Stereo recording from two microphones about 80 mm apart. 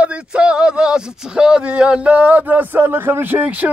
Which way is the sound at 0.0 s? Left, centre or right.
Centre.